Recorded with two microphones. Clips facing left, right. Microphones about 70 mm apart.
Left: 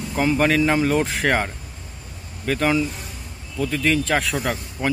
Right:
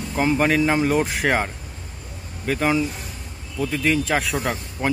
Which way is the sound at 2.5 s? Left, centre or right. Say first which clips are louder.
Even; centre.